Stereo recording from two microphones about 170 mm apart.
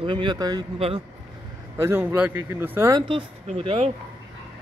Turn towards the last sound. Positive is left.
turn(degrees=-35)  # may be behind; listen again after turning